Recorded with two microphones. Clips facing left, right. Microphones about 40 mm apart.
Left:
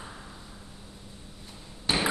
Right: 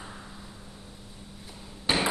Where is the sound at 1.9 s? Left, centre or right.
Centre.